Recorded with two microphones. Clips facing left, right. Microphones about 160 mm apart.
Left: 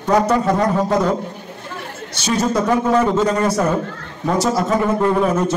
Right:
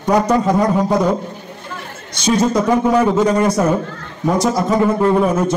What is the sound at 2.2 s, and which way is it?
A man's voice, 15° right (ahead or behind).